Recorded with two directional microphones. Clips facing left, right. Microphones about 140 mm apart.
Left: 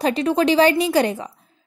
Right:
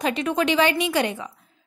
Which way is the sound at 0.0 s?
35° left (ahead or behind).